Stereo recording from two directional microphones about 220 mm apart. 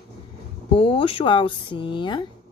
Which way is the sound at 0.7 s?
25° left (ahead or behind).